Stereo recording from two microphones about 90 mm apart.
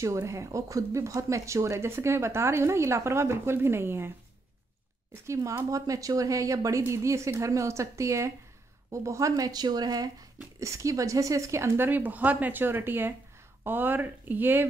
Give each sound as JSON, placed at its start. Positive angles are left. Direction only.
{"t": 0.0, "sound": "speech", "side_deg": -35}
{"t": 5.2, "sound": "speech", "side_deg": -35}
{"t": 10.6, "sound": "speech", "side_deg": -35}